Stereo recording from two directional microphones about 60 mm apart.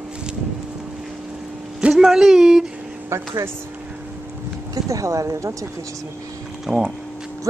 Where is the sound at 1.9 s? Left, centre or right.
Centre.